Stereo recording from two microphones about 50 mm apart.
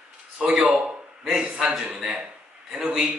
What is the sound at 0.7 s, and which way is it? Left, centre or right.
A man's voice, right.